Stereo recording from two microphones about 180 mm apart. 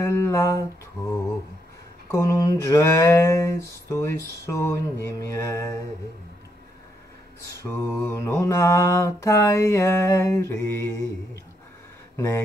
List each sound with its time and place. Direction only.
0.0 s a sound: 15° left (ahead or behind)
2.0 s mantra: 15° left (ahead or behind)
7.4 s mantra: 15° left (ahead or behind)
12.2 s mantra: 15° left (ahead or behind)